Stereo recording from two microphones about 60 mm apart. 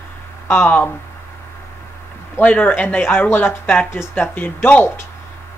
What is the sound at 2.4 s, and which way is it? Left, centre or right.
Speech, left.